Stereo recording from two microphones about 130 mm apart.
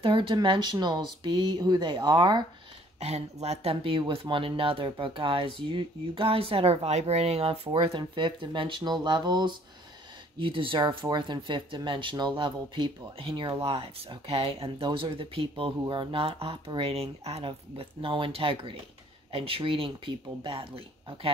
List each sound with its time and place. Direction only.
0.0 s speech: 40° right (ahead or behind)
3.0 s speech: 55° right (ahead or behind)